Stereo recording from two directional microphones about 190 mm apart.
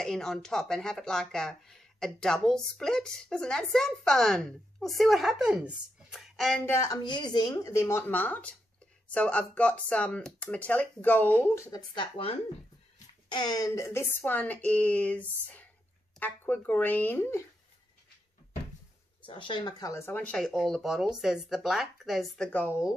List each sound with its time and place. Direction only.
0.0 s speech: centre (ahead or behind)
6.6 s a woman's voice: 20° left (ahead or behind)
19.2 s speech: 25° left (ahead or behind); by 22.8 s 10° left (ahead or behind)